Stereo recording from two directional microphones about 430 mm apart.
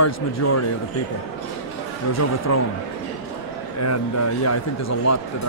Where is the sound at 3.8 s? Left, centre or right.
Left.